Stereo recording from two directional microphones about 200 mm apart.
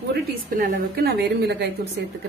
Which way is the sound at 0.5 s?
50° right (ahead or behind).